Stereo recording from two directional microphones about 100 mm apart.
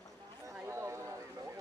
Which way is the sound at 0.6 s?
30° right (ahead or behind).